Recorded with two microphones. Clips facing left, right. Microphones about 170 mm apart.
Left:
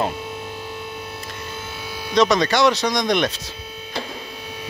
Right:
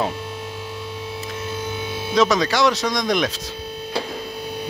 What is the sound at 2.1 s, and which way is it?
Speech, 5° right (ahead or behind).